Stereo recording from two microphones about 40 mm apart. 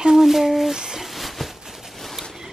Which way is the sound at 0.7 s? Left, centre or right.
Centre.